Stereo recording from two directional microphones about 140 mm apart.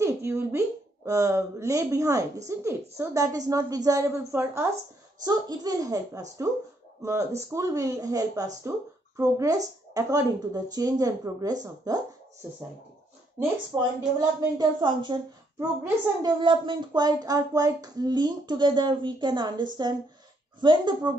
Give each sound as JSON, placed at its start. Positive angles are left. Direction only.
{"t": 0.0, "sound": "a sound", "side_deg": -20}
{"t": 1.0, "sound": "a woman's voice", "side_deg": -25}
{"t": 13.7, "sound": "a woman's voice", "side_deg": -25}